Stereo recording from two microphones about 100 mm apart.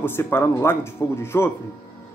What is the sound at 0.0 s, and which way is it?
Speech, 25° left (ahead or behind).